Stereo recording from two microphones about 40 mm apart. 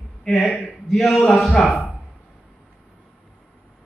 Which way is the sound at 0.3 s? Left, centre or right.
Centre.